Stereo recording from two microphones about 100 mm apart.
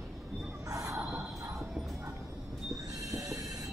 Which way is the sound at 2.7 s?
35° right (ahead or behind).